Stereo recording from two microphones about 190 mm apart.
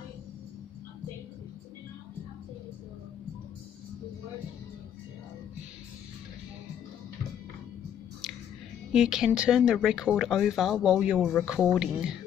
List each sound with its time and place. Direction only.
8.9 s speech: centre (ahead or behind)